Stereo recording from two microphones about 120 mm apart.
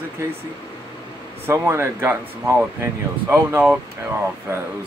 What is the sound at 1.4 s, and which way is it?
Speech, 20° right (ahead or behind).